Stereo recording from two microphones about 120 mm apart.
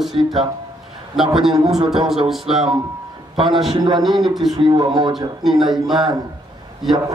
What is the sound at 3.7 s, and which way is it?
Speech, 35° right (ahead or behind).